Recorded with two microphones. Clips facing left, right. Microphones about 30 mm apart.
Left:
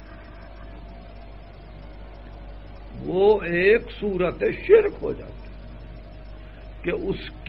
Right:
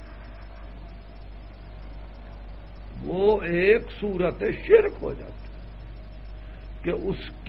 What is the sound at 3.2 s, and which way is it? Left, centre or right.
A man's voice, centre.